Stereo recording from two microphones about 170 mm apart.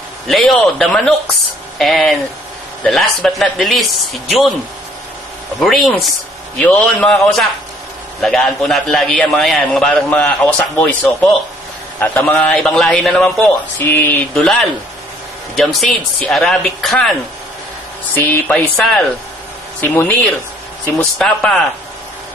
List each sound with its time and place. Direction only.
0.3 s a man's voice: 5° left (ahead or behind)
5.6 s a man's voice: centre (ahead or behind)
18.1 s a man's voice: 10° left (ahead or behind)
19.8 s a man's voice: 10° left (ahead or behind)